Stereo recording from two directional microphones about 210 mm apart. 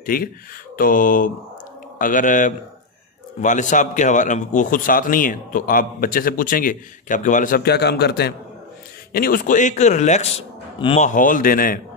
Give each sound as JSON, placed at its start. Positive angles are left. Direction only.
{"t": 0.0, "sound": "speech", "side_deg": 45}